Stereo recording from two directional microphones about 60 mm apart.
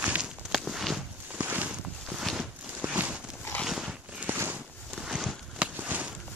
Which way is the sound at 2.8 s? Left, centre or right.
Right.